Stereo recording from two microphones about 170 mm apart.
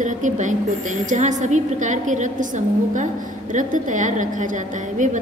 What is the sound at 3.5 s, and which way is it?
A woman's voice, 50° right (ahead or behind).